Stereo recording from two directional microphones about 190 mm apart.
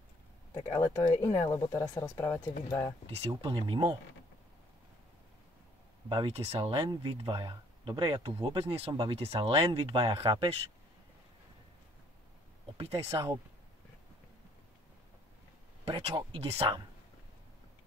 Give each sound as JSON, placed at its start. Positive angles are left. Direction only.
{"t": 0.7, "sound": "speech", "side_deg": 15}
{"t": 1.1, "sound": "speech", "side_deg": 25}
{"t": 3.1, "sound": "speech", "side_deg": -30}
{"t": 6.0, "sound": "speech", "side_deg": -25}
{"t": 12.7, "sound": "speech", "side_deg": -30}
{"t": 15.8, "sound": "speech", "side_deg": -30}